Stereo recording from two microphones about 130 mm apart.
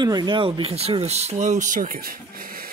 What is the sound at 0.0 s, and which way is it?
Speech, 30° right (ahead or behind).